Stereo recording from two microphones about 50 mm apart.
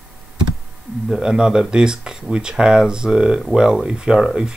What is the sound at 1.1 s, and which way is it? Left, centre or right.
Speech, centre.